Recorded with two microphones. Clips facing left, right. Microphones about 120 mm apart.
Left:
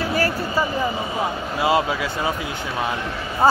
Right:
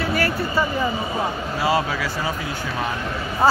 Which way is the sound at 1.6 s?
20° left (ahead or behind).